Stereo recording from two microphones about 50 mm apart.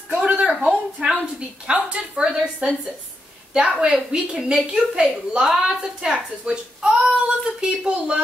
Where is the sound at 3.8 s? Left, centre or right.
Centre.